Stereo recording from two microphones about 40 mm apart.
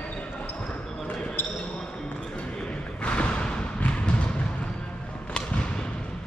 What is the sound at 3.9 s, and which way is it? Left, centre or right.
Thump, left.